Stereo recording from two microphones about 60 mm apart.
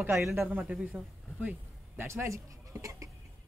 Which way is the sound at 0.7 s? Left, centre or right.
Right.